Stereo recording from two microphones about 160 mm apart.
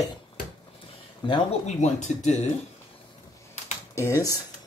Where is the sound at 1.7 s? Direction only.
50° left (ahead or behind).